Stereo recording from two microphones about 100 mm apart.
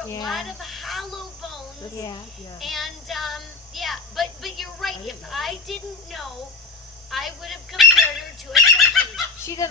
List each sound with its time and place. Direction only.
0.2 s speech: centre (ahead or behind)
2.6 s speech: centre (ahead or behind)
8.5 s fowl: centre (ahead or behind)
9.4 s speech: 30° left (ahead or behind)